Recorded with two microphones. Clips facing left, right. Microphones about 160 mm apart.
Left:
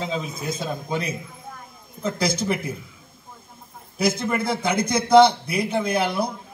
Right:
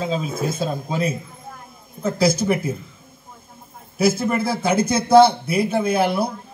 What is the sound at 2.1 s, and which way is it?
Speech, 25° right (ahead or behind).